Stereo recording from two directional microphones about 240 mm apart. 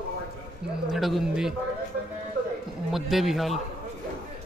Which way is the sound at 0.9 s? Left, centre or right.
Centre.